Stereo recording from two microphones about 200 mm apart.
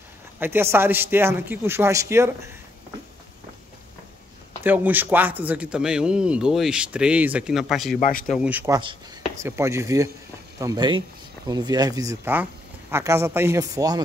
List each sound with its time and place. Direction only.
0.4 s a man's voice: 10° right (ahead or behind)
4.6 s speech: 10° right (ahead or behind)
8.0 s speech: 45° left (ahead or behind)
8.3 s a man's voice: 5° right (ahead or behind)